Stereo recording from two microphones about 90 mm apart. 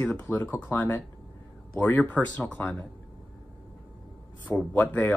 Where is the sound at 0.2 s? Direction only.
20° left (ahead or behind).